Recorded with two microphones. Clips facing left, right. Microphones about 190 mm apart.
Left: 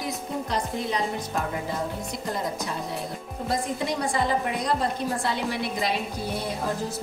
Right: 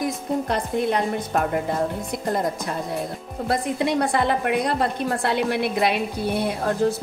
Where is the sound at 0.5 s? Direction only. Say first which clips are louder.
Right 4 dB; 60° right (ahead or behind).